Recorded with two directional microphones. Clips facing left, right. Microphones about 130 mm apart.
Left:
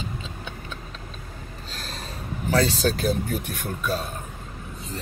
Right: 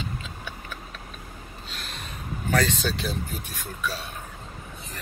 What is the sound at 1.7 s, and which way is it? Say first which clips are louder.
Snort: left 3 dB; 35° left (ahead or behind).